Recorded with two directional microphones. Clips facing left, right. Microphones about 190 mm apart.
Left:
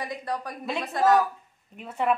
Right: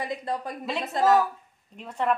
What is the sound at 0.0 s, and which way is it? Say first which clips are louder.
Speech: right 1 dB; 25° right (ahead or behind).